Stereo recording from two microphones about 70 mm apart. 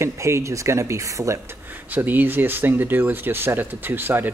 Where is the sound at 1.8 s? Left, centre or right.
Right.